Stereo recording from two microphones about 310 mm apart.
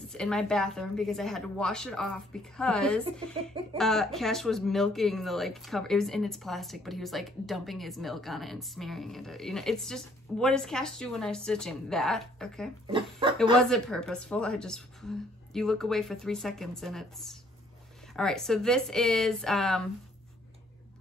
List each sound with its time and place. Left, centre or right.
0.1 s a woman's voice: centre
12.8 s speech: centre
13.7 s a woman's voice: centre